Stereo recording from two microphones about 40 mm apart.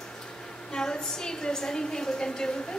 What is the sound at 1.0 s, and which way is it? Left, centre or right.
A woman's voice, centre.